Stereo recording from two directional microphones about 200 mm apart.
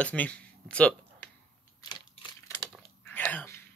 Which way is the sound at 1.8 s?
20° left (ahead or behind).